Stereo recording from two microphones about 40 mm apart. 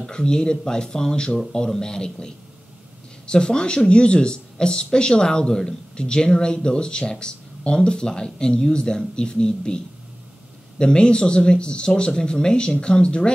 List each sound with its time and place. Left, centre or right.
0.0 s speech: centre
10.8 s speech: left